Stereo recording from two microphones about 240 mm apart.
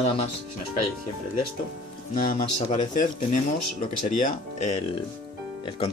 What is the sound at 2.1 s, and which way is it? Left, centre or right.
Speech, left.